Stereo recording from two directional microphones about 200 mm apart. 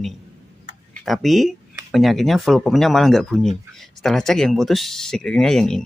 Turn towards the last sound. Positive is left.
turn(degrees=0)  # may be behind; listen again after turning